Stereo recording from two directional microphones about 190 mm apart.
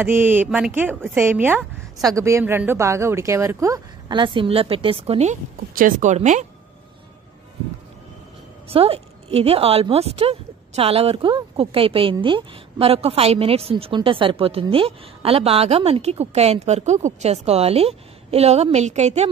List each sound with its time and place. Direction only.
0.0 s a woman's voice: 10° right (ahead or behind); by 6.4 s 40° right (ahead or behind)
8.6 s a woman's voice: 30° right (ahead or behind)